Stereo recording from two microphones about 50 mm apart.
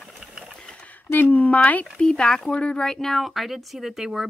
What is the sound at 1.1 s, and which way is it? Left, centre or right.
Speech, left.